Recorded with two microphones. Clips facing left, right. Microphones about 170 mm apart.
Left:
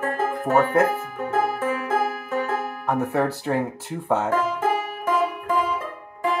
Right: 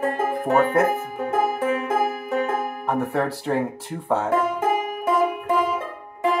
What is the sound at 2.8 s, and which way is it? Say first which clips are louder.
Speech: left 2 dB; centre (ahead or behind).